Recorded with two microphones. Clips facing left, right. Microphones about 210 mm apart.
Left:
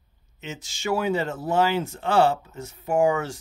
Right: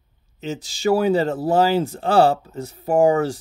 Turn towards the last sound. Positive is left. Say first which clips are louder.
# right 5 dB
turn(degrees=-35)  # may be behind; listen again after turning